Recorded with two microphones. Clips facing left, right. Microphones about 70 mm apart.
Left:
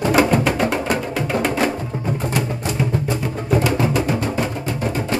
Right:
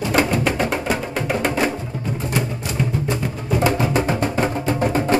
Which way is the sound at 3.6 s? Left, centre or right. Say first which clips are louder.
Even; right.